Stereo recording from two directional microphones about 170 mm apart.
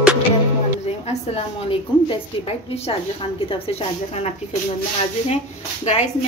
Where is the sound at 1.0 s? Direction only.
35° left (ahead or behind).